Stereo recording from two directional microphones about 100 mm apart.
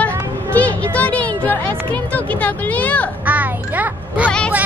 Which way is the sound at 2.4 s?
15° left (ahead or behind).